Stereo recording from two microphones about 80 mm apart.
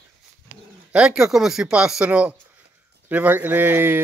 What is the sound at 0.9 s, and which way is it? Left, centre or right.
A man's voice, centre.